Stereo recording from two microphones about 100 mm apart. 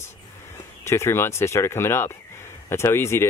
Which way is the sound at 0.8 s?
25° left (ahead or behind).